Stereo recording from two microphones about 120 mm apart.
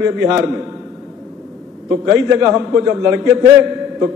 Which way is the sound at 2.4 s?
5° right (ahead or behind).